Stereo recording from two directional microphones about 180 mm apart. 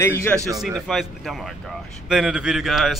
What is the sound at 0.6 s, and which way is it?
A man's voice, centre (ahead or behind).